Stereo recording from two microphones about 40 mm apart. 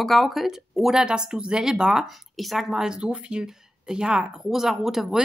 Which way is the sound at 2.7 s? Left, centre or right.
Centre.